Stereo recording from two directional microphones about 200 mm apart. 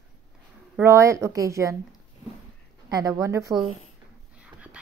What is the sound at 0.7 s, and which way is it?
A woman's voice, 15° right (ahead or behind).